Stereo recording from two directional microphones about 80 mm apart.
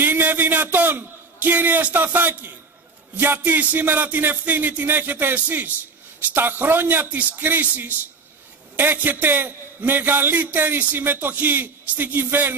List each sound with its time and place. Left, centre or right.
0.0 s a man's voice: right